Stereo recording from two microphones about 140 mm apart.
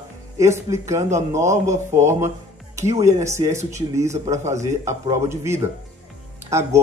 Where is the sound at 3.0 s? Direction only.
20° right (ahead or behind).